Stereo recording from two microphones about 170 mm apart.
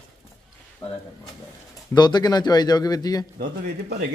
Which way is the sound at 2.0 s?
25° left (ahead or behind).